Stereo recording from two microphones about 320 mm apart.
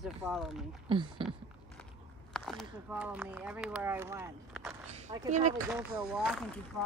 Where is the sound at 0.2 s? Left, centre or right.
Centre.